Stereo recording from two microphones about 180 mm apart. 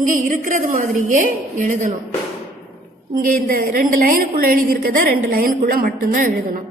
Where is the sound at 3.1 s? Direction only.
50° right (ahead or behind).